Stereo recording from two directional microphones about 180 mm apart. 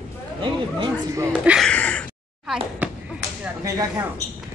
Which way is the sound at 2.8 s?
10° right (ahead or behind).